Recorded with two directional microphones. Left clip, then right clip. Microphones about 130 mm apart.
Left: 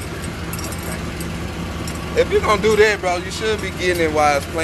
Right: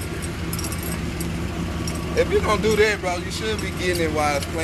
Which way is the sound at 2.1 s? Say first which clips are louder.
Left 4 dB; 15° left (ahead or behind).